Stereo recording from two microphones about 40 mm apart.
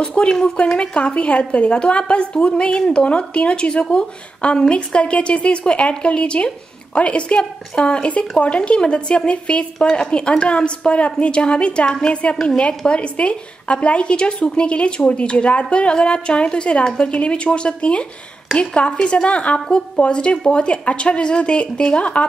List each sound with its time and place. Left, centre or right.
0.1 s a woman's voice: left